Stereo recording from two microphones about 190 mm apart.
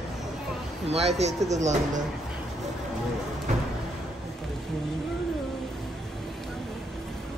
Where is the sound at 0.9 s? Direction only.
35° right (ahead or behind).